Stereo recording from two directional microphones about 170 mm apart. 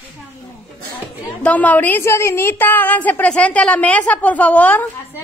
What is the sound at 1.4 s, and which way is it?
A woman's voice, 10° left (ahead or behind).